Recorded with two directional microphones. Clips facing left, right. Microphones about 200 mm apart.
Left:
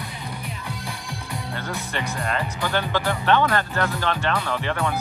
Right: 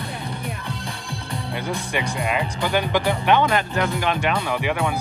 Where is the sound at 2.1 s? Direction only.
10° right (ahead or behind).